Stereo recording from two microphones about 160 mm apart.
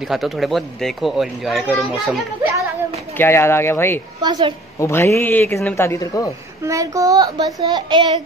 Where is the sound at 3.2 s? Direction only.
15° left (ahead or behind).